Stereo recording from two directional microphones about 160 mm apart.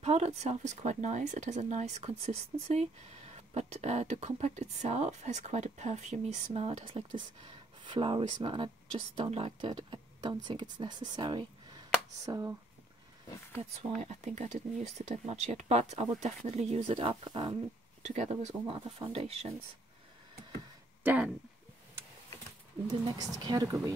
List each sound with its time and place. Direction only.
0.0 s speech: 45° right (ahead or behind); by 12.5 s 20° right (ahead or behind)
13.6 s speech: 45° right (ahead or behind)
18.0 s speech: 45° right (ahead or behind)
21.0 s speech: 10° right (ahead or behind)
23.0 s speech: 25° right (ahead or behind)